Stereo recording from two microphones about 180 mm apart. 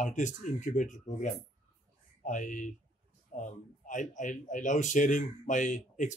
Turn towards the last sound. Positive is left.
turn(degrees=45)  # may be behind; listen again after turning